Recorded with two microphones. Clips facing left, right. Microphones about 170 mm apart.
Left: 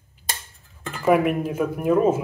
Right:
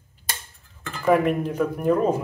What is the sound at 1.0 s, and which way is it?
Speech, 10° left (ahead or behind).